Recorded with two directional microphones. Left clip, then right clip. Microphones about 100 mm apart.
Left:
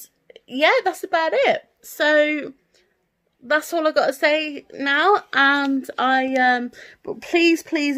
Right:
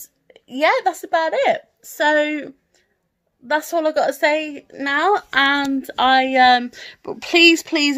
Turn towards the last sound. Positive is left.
turn(degrees=30)  # may be behind; listen again after turning